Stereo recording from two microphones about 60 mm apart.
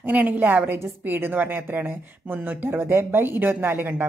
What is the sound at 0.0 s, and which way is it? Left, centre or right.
Speech, right.